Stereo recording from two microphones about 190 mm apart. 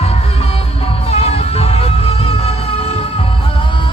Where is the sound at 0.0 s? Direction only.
30° left (ahead or behind).